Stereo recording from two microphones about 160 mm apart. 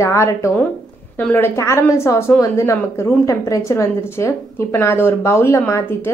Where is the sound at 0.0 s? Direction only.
20° left (ahead or behind).